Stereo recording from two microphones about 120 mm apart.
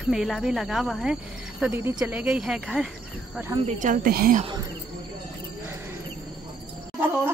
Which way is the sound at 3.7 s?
90° right.